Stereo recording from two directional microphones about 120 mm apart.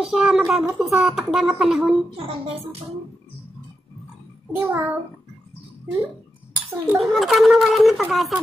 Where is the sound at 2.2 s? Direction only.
55° right (ahead or behind).